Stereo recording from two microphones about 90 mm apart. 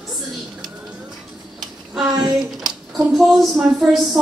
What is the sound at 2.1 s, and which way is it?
Speech, 50° right (ahead or behind).